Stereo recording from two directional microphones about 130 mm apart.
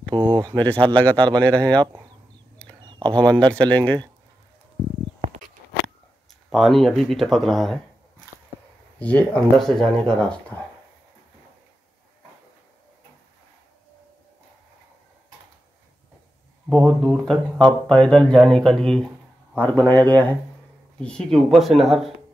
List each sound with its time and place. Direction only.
0.1 s a sound: 35° right (ahead or behind)
0.6 s speech: 10° left (ahead or behind)
3.2 s speech: 35° right (ahead or behind)
3.4 s speech: 10° left (ahead or behind)
5.2 s a sound: 65° right (ahead or behind)
6.5 s speech: centre (ahead or behind)
9.0 s speech: 10° left (ahead or behind)
16.6 s speech: centre (ahead or behind)